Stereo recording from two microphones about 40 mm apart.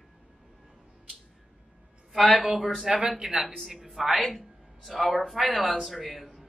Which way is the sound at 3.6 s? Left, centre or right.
Centre.